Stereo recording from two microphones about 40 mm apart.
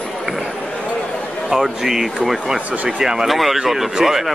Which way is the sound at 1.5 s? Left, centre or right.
Centre.